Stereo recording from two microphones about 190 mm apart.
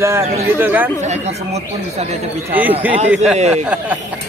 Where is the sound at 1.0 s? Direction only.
35° right (ahead or behind).